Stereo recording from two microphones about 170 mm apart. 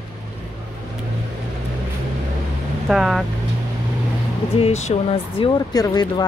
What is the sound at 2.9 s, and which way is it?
Speech, centre (ahead or behind).